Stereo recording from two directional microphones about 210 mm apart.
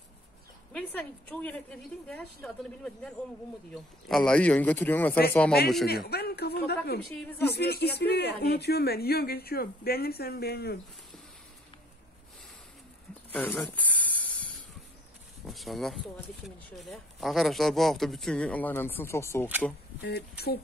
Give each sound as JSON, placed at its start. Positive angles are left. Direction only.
{"t": 0.7, "sound": "a man's voice", "side_deg": 5}
{"t": 5.9, "sound": "speech", "side_deg": 50}
{"t": 13.3, "sound": "a sound", "side_deg": 5}
{"t": 15.4, "sound": "speech", "side_deg": 0}
{"t": 20.0, "sound": "speech", "side_deg": 50}